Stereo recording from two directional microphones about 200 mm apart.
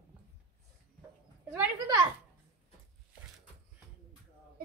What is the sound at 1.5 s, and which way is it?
Speech, 20° right (ahead or behind).